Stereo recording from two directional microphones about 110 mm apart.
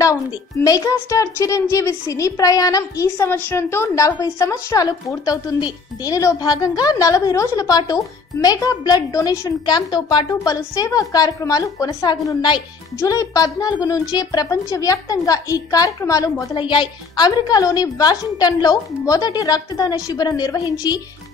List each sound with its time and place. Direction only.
0.7 s a woman's voice: 30° left (ahead or behind)
16.5 s a woman's voice: 45° left (ahead or behind)